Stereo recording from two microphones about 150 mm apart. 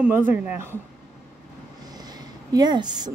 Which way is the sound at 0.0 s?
10° right (ahead or behind).